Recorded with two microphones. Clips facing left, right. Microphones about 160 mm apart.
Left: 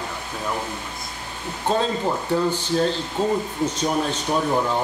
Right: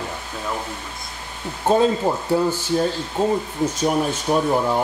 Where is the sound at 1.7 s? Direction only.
10° right (ahead or behind).